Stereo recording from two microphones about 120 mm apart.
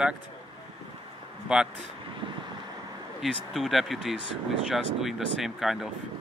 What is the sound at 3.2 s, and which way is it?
Speech, centre (ahead or behind).